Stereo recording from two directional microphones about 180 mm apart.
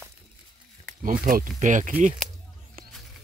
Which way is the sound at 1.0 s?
50° right (ahead or behind).